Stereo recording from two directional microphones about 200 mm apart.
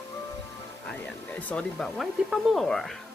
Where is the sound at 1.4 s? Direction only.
5° left (ahead or behind).